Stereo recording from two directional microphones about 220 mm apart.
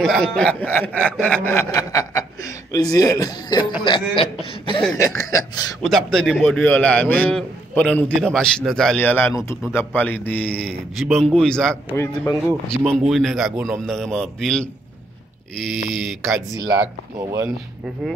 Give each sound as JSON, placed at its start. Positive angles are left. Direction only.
{"t": 0.0, "sound": "speech", "side_deg": 0}
{"t": 5.8, "sound": "a man's voice", "side_deg": 5}
{"t": 15.9, "sound": "a man's voice", "side_deg": 0}
{"t": 17.2, "sound": "speech", "side_deg": -15}